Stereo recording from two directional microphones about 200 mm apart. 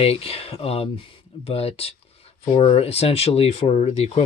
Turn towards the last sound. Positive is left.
turn(degrees=30)  # may be behind; listen again after turning